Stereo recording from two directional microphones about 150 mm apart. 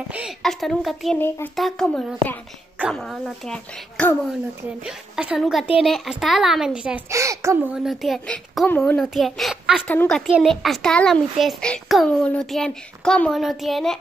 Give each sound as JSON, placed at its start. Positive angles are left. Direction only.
{"t": 0.1, "sound": "a child's voice", "side_deg": 0}
{"t": 1.1, "sound": "speech", "side_deg": 10}
{"t": 1.6, "sound": "a child's voice", "side_deg": 0}
{"t": 4.8, "sound": "a child's voice", "side_deg": -5}
{"t": 7.1, "sound": "a child's voice", "side_deg": -20}
{"t": 7.7, "sound": "a child's voice", "side_deg": 0}
{"t": 9.8, "sound": "a child's voice", "side_deg": 5}